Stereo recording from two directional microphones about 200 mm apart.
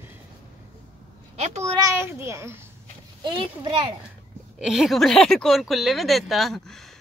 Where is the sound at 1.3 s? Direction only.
35° right (ahead or behind).